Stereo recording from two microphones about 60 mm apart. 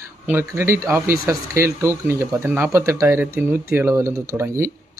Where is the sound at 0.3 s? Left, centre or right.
Right.